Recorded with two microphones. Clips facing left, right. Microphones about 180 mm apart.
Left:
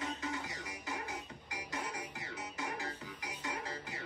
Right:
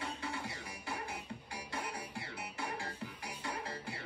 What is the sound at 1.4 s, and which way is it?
Music, 30° right (ahead or behind).